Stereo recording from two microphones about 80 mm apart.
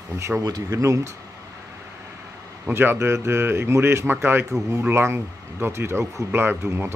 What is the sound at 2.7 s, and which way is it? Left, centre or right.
Speech, right.